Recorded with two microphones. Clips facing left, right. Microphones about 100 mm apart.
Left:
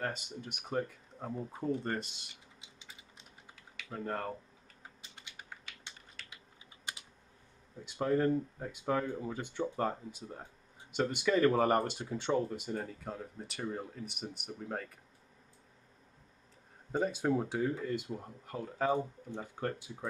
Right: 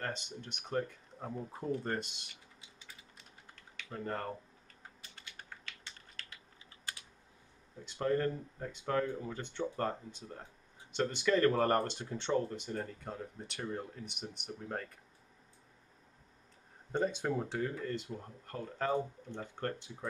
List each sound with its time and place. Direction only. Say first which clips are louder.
0.0 s speech: left 2 dB; 5° left (ahead or behind)
2.6 s a sound: left 1 dB; 20° left (ahead or behind)
3.5 s typing: left 1 dB; 5° left (ahead or behind)
5.0 s typing: even; 20° left (ahead or behind)
5.9 s typing: even; 5° left (ahead or behind)
6.9 s typing: left 2 dB; 20° left (ahead or behind)
7.8 s speech: left 2 dB; 10° left (ahead or behind)
16.9 s speech: left 2 dB; 5° left (ahead or behind)